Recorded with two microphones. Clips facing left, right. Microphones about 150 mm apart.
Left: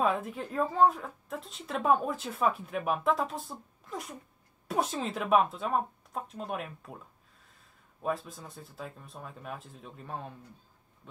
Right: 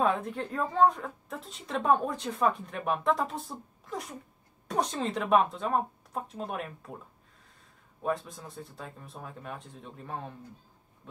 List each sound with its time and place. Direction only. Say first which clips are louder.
0.0 s a woman's voice: right 1 dB; centre (ahead or behind)
8.0 s a woman's voice: right 2 dB; centre (ahead or behind)